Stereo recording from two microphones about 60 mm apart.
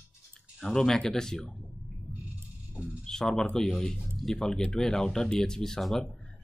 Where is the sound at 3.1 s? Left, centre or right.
Centre.